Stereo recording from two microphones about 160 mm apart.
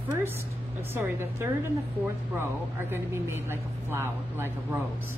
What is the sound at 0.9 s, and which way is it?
Speech, 15° right (ahead or behind).